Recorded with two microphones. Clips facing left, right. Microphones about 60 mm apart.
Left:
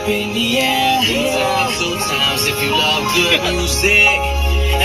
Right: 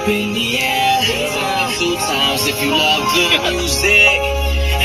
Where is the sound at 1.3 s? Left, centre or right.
Centre.